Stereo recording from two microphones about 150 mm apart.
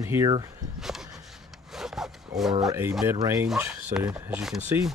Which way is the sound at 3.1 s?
15° right (ahead or behind).